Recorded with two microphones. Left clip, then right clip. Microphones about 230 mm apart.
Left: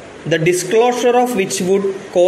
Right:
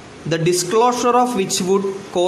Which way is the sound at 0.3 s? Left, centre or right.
Centre.